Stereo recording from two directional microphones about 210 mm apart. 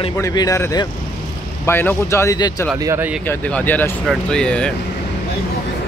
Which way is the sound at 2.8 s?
10° right (ahead or behind).